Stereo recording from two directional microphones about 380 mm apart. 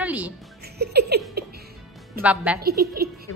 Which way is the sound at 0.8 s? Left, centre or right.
Right.